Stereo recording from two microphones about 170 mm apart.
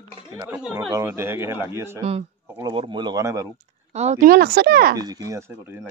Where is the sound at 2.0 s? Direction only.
35° right (ahead or behind).